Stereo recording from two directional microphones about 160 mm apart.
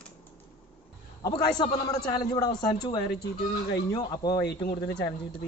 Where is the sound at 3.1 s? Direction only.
85° left.